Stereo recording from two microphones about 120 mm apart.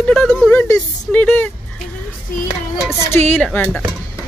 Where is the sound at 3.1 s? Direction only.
15° left (ahead or behind).